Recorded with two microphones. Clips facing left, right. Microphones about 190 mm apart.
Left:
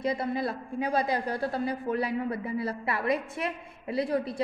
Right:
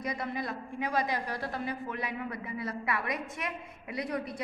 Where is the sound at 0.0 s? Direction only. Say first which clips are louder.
Left 6 dB; 30° left (ahead or behind).